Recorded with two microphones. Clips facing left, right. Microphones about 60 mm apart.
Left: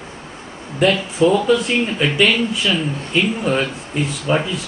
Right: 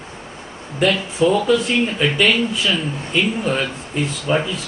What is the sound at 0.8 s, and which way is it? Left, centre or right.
Speech, centre.